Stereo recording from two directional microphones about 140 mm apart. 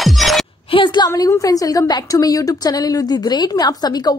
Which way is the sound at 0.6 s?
35° left (ahead or behind).